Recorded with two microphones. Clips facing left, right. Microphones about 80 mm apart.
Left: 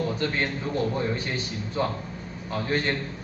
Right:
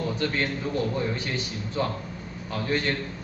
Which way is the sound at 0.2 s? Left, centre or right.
Left.